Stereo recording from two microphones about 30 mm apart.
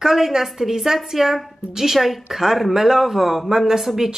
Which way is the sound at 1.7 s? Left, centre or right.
Centre.